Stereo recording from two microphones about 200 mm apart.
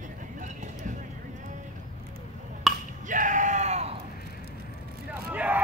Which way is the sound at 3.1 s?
40° right (ahead or behind).